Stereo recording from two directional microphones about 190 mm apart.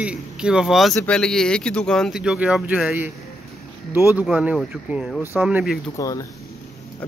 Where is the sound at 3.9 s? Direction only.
10° right (ahead or behind).